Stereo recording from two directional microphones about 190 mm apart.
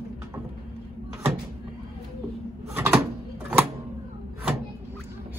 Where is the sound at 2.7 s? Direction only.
10° right (ahead or behind).